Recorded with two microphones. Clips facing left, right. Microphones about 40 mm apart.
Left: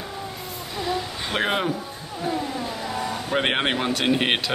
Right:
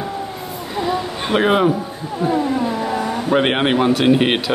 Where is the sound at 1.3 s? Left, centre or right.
Centre.